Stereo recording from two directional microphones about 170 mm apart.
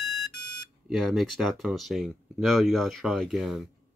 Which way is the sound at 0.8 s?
Centre (ahead or behind).